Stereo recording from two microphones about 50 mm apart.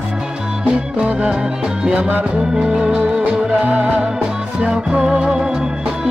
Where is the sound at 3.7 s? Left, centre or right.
Right.